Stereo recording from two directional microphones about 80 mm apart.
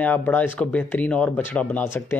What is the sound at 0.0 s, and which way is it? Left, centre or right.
Speech, left.